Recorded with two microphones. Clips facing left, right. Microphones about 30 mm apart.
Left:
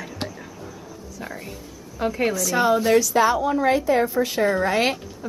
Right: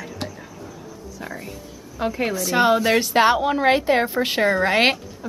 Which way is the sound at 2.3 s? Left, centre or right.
Right.